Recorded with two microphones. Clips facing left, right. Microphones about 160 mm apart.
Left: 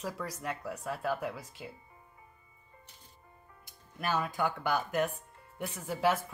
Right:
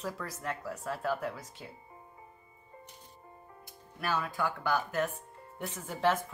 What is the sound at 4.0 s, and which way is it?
Speech, 20° left (ahead or behind).